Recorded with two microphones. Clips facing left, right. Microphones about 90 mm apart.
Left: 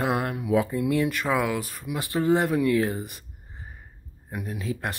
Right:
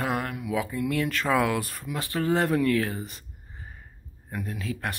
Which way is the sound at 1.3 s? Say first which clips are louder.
Right 1 dB; 5° left (ahead or behind).